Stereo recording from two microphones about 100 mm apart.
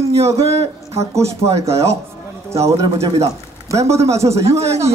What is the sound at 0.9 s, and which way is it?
A man's voice, 30° right (ahead or behind).